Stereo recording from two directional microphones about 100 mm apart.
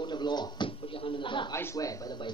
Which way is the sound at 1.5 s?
30° left (ahead or behind).